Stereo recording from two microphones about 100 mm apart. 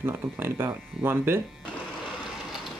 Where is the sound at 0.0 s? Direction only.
25° right (ahead or behind).